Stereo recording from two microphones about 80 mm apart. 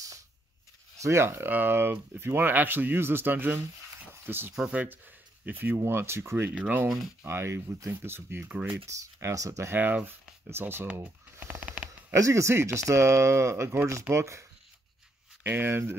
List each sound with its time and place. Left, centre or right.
0.9 s speech: right
6.5 s speech: centre
7.2 s speech: right
8.5 s speech: centre
8.8 s speech: right
9.8 s speech: right
11.3 s a sound: right
11.6 s a sound: centre
12.1 s speech: right
15.4 s speech: right